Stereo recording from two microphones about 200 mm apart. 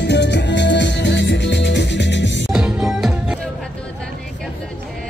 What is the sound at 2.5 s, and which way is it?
Music, 5° right (ahead or behind).